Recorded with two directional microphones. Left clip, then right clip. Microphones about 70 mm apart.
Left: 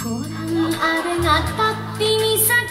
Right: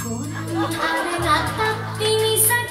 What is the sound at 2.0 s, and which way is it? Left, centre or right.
Music, left.